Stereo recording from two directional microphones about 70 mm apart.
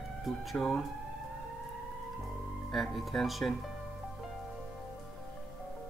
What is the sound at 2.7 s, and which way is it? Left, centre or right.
Speech, centre.